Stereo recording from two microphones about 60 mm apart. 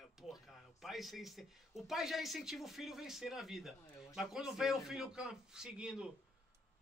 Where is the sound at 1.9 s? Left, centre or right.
Centre.